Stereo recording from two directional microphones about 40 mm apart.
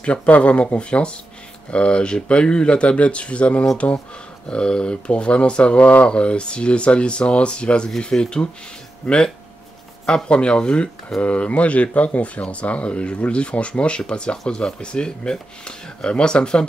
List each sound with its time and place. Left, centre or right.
0.0 s speech: left